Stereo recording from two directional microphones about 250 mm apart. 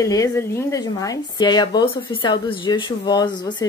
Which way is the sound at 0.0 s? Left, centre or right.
Centre.